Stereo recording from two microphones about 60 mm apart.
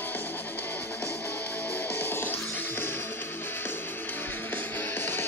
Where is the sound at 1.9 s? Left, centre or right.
Left.